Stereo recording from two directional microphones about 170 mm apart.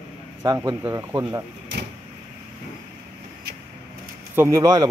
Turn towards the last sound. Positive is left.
turn(degrees=-20)  # may be behind; listen again after turning